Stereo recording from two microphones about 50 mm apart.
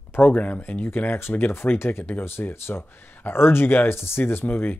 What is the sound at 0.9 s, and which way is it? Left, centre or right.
Speech, left.